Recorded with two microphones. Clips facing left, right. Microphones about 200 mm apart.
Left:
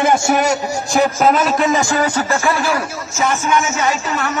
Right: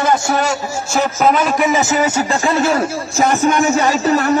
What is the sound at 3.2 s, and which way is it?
Speech, 35° right (ahead or behind).